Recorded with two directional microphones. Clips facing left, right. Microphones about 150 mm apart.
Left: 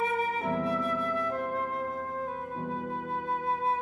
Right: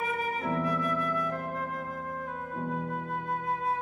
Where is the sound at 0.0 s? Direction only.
25° left (ahead or behind).